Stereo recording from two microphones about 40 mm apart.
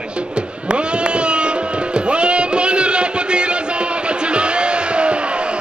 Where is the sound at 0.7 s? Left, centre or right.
Right.